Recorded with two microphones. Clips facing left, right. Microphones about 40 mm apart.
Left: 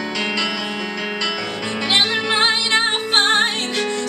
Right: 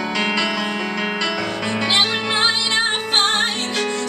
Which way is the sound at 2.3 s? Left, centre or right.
Centre.